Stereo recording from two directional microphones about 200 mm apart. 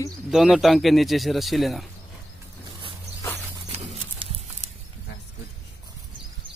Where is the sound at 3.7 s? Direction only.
30° right (ahead or behind).